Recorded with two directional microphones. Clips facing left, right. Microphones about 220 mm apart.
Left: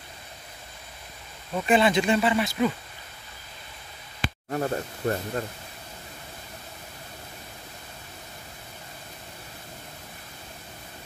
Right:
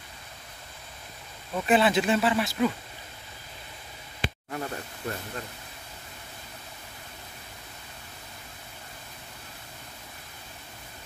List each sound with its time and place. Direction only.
1.5 s speech: centre (ahead or behind)
4.5 s speech: 40° left (ahead or behind)